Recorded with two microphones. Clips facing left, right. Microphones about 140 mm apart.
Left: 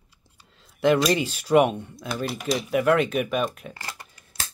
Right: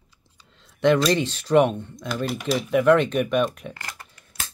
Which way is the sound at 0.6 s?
5° left (ahead or behind).